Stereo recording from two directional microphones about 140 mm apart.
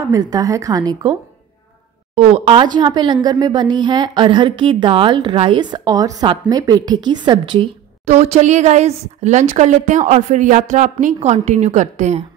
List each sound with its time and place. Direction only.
0.0 s speech: 25° right (ahead or behind)
2.1 s speech: 40° right (ahead or behind)
8.0 s a woman's voice: 50° right (ahead or behind)
11.1 s a woman's voice: 50° right (ahead or behind)